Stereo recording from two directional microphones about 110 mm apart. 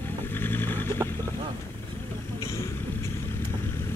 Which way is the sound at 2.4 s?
25° left (ahead or behind).